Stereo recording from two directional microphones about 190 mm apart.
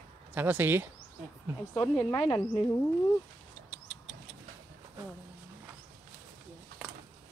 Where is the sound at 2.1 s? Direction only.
20° left (ahead or behind).